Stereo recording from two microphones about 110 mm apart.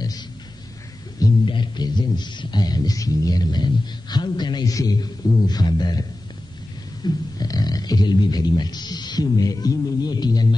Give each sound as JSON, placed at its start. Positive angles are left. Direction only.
{"t": 1.4, "sound": "speech", "side_deg": 45}